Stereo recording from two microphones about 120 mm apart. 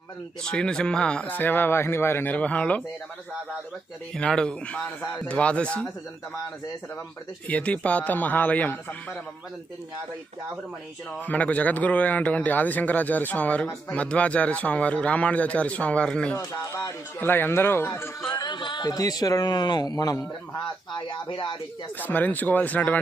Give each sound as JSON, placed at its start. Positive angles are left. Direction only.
{"t": 0.4, "sound": "speech", "side_deg": 5}
{"t": 4.1, "sound": "speech", "side_deg": 5}
{"t": 7.4, "sound": "speech", "side_deg": 10}
{"t": 11.1, "sound": "speech", "side_deg": 10}
{"t": 16.3, "sound": "a man's voice", "side_deg": 30}
{"t": 17.2, "sound": "a man's voice", "side_deg": 15}
{"t": 18.3, "sound": "a man's voice", "side_deg": 40}
{"t": 22.0, "sound": "speech", "side_deg": 15}